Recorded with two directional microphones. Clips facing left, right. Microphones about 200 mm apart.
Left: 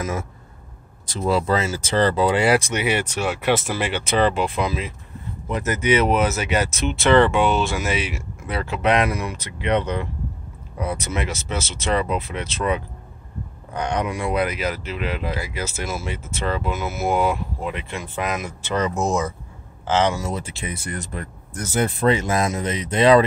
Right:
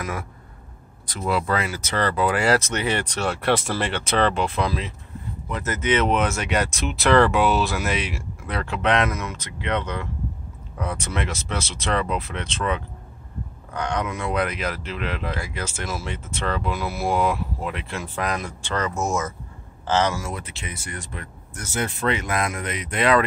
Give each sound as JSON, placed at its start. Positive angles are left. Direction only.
{"t": 1.2, "sound": "speech", "side_deg": 30}
{"t": 18.8, "sound": "speech", "side_deg": 15}
{"t": 20.6, "sound": "speech", "side_deg": 40}